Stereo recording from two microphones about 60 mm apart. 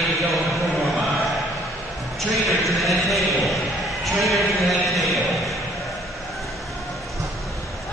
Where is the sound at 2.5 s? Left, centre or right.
Centre.